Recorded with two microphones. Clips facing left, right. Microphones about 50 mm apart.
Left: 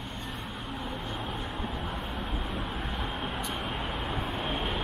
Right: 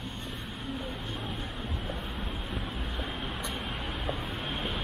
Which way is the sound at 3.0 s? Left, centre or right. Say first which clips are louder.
Left 1 dB; left.